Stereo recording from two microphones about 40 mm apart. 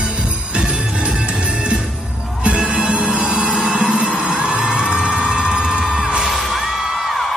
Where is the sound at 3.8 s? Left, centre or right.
Right.